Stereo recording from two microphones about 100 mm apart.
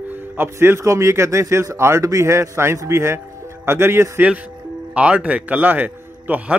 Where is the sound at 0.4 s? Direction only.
25° right (ahead or behind).